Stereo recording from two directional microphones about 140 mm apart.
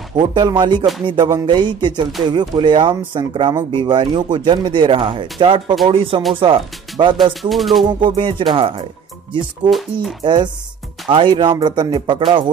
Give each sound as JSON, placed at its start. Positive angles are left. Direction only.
{"t": 0.2, "sound": "speech", "side_deg": -30}
{"t": 7.4, "sound": "music", "side_deg": 0}
{"t": 7.8, "sound": "speech", "side_deg": -35}
{"t": 10.2, "sound": "speech", "side_deg": -35}